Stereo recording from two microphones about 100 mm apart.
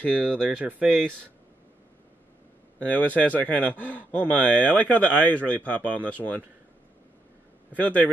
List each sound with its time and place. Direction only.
0.2 s speech: 15° right (ahead or behind)
3.0 s speech: 15° left (ahead or behind)
7.7 s speech: 15° left (ahead or behind)